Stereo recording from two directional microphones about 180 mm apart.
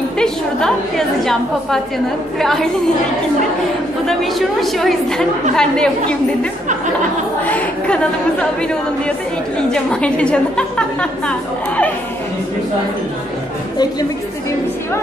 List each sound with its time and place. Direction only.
0.2 s a woman's voice: 5° left (ahead or behind)
4.0 s a woman's voice: centre (ahead or behind)
7.4 s a woman's voice: 10° left (ahead or behind)
9.6 s a woman's voice: 5° left (ahead or behind)